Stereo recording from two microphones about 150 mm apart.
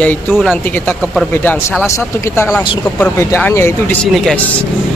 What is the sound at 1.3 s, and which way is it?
Speech, 15° left (ahead or behind).